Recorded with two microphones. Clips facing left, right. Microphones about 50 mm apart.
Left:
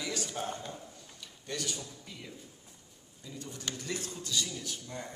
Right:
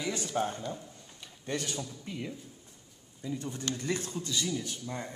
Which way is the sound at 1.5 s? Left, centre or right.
Right.